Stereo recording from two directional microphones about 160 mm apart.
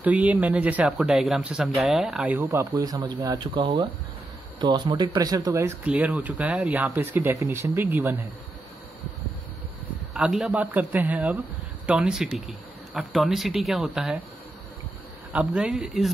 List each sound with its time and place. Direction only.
0.0 s speech: 10° right (ahead or behind)
10.1 s speech: 5° right (ahead or behind)
15.3 s speech: 5° right (ahead or behind)